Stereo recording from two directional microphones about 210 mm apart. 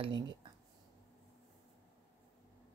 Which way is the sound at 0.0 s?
20° right (ahead or behind).